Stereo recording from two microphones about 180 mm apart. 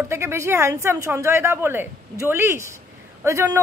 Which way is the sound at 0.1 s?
15° right (ahead or behind).